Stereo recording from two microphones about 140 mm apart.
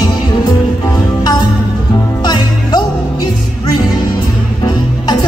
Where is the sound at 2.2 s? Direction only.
30° left (ahead or behind).